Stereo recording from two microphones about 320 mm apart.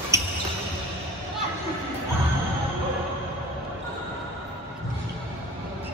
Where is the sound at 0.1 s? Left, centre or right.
Centre.